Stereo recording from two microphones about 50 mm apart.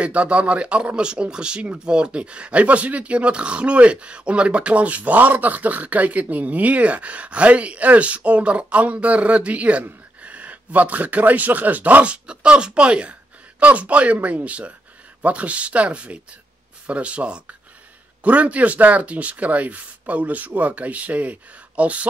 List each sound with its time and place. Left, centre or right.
0.0 s a man's voice: right